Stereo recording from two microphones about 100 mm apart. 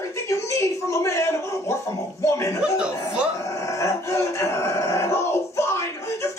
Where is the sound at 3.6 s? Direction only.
30° left (ahead or behind).